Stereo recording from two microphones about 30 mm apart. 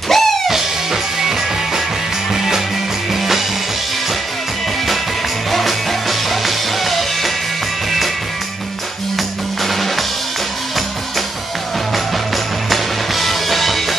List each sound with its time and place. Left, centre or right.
0.1 s music: centre
2.3 s music: centre
5.5 s music: centre
9.6 s music: centre
12.6 s music: centre